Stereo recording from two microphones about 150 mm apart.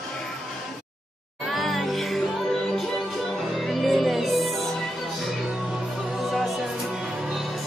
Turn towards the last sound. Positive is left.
turn(degrees=0)  # may be behind; listen again after turning